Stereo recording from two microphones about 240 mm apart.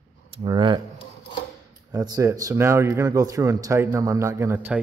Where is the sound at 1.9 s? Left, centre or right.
Centre.